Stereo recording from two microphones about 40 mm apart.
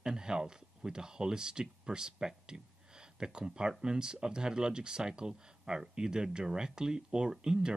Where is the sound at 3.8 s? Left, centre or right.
Centre.